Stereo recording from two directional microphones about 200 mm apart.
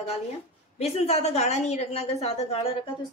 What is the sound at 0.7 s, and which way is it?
A woman's voice, 30° left (ahead or behind).